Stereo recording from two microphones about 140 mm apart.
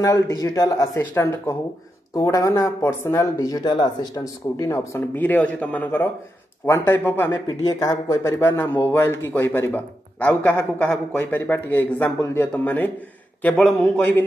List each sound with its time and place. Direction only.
0.0 s speech: 25° left (ahead or behind)
5.2 s a man's voice: 10° left (ahead or behind)